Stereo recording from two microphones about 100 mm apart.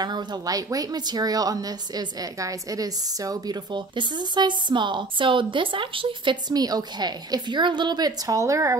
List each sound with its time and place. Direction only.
0.0 s a woman's voice: 45° right (ahead or behind)
3.7 s a woman's voice: 50° right (ahead or behind); by 8.7 s 30° right (ahead or behind)